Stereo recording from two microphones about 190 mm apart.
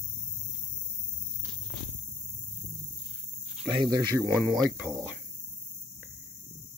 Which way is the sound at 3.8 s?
20° right (ahead or behind).